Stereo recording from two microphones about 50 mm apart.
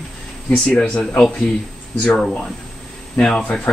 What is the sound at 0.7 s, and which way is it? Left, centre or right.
Speech, left.